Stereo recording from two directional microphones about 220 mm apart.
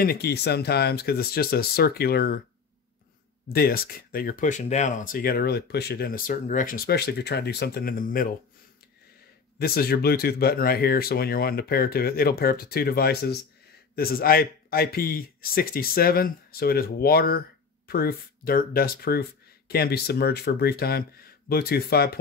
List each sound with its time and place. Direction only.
0.0 s speech: 45° left (ahead or behind)
3.5 s speech: 45° left (ahead or behind)
9.6 s speech: 45° left (ahead or behind)